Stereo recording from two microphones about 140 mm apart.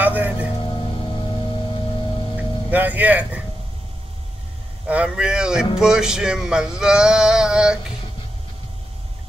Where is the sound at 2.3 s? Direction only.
10° right (ahead or behind).